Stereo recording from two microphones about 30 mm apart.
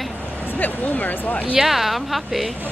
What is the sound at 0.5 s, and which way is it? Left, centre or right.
Speech, left.